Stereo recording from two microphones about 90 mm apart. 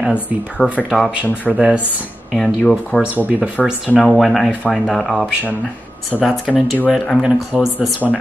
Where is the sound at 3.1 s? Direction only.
20° right (ahead or behind).